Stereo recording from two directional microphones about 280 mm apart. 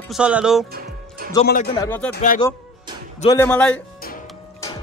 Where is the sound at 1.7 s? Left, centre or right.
Centre.